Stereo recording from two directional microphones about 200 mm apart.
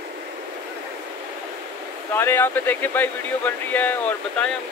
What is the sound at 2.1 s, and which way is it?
Speech, 10° left (ahead or behind).